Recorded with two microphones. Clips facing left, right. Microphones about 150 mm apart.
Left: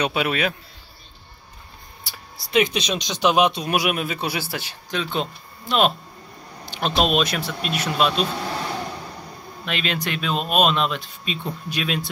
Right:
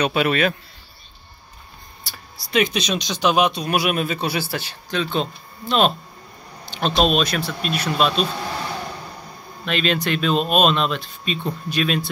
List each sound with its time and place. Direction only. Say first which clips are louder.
0.0 s speech: right 3 dB; 10° left (ahead or behind)
2.0 s speech: left 1 dB; 20° left (ahead or behind)
9.7 s speech: right 5 dB; 15° left (ahead or behind)